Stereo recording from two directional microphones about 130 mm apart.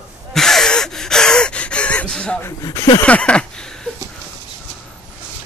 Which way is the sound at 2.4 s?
20° left (ahead or behind).